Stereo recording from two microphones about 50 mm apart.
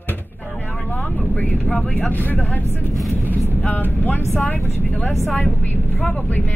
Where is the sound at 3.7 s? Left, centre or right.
Left.